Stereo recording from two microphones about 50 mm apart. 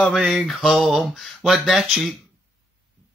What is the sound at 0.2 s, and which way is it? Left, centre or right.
Speech, centre.